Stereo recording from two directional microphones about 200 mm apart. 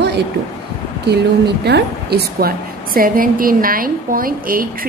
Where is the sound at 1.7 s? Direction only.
55° right (ahead or behind).